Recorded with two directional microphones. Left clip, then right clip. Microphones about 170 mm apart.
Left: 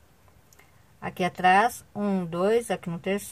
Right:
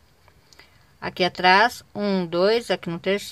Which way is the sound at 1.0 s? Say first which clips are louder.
Right 4 dB; 20° right (ahead or behind).